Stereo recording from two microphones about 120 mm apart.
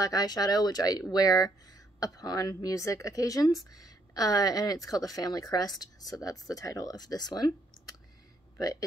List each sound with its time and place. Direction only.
0.0 s a woman's voice: 30° left (ahead or behind)
8.5 s a woman's voice: 30° left (ahead or behind)